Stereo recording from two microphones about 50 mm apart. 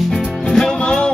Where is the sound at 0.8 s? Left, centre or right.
Centre.